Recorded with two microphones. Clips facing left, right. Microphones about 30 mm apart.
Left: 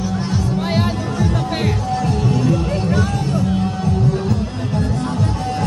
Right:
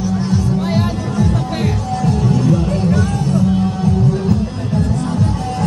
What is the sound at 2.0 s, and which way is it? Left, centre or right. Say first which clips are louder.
Music: right 4 dB; centre.